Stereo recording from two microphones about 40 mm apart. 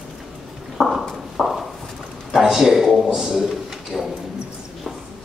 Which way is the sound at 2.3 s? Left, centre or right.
Centre.